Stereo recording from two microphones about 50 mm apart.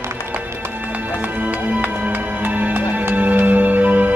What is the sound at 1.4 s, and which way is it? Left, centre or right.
Music, right.